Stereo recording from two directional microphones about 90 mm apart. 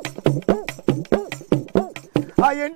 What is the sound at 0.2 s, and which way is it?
Music, 15° right (ahead or behind).